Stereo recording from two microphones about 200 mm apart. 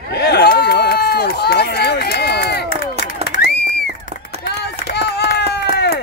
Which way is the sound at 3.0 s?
40° left (ahead or behind).